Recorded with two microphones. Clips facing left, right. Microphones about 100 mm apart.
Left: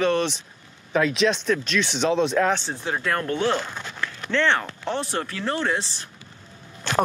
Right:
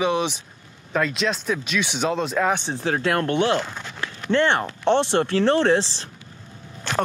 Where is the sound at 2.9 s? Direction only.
60° right (ahead or behind).